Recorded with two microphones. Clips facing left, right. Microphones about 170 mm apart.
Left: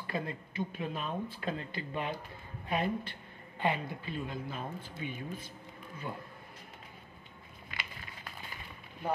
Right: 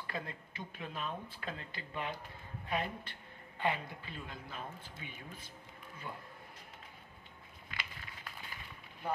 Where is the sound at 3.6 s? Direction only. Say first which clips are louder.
Left 3 dB; 20° left (ahead or behind).